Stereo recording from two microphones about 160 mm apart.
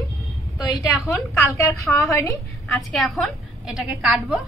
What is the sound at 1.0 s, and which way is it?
A woman's voice, 20° left (ahead or behind).